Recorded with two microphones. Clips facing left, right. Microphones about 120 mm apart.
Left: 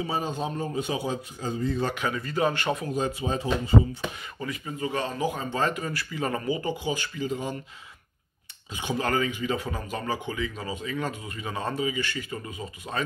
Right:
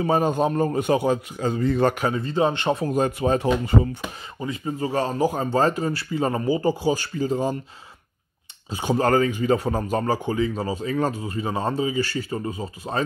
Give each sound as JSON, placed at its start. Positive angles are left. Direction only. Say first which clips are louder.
{"t": 0.0, "sound": "speech", "louder": "right 9 dB", "side_deg": -55}
{"t": 2.0, "sound": "speech", "louder": "right 5 dB", "side_deg": -35}
{"t": 2.9, "sound": "speech", "louder": "right 7 dB", "side_deg": -55}
{"t": 4.4, "sound": "speech", "louder": "right 5 dB", "side_deg": -30}
{"t": 8.6, "sound": "speech", "louder": "right 7 dB", "side_deg": -40}